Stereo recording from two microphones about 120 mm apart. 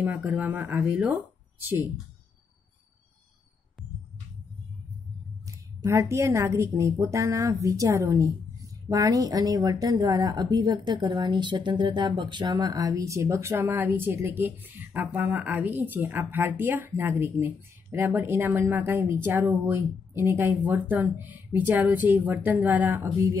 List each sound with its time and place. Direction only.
0.0 s speech: 15° right (ahead or behind)
5.9 s speech: 25° right (ahead or behind)